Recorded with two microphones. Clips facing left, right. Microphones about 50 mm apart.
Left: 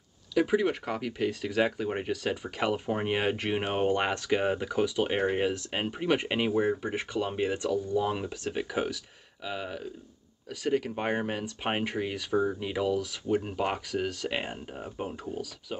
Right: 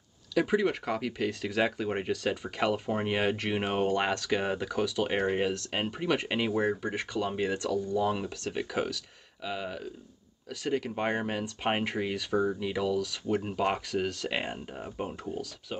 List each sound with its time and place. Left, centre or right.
0.3 s speech: centre
12.5 s speech: centre
13.3 s speech: centre